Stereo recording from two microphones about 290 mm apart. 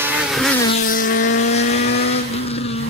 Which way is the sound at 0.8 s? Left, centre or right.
Left.